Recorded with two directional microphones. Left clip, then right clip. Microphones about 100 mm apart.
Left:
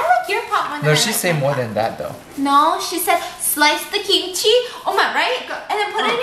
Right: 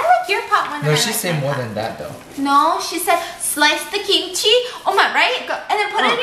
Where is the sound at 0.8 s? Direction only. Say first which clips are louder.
Left 2 dB; 15° left (ahead or behind).